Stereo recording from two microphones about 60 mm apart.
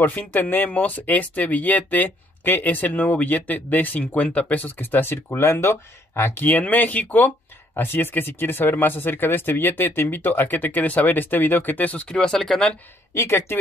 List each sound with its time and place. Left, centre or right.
0.0 s speech: left
6.4 s speech: left
12.1 s speech: centre
13.1 s speech: left